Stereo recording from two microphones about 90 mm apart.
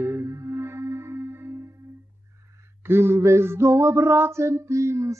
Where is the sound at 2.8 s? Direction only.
30° right (ahead or behind).